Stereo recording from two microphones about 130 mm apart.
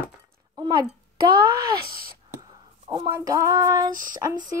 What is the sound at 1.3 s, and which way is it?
Female singing, 30° right (ahead or behind).